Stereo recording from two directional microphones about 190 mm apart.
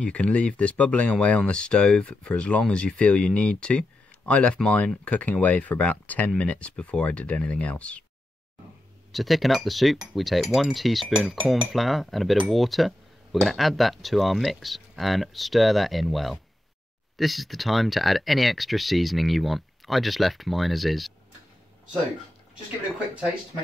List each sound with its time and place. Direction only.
0.0 s chink: 5° left (ahead or behind)
4.3 s speech: 5° left (ahead or behind)
9.1 s chink: centre (ahead or behind)